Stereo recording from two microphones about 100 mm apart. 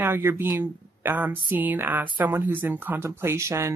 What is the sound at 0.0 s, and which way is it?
Speech, 20° right (ahead or behind).